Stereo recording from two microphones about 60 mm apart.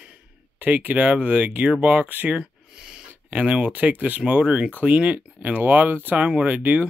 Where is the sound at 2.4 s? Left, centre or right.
Centre.